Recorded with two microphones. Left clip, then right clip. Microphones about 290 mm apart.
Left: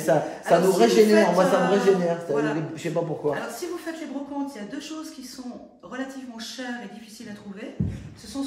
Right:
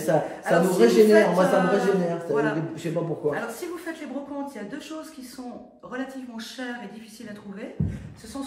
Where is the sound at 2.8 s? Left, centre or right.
Centre.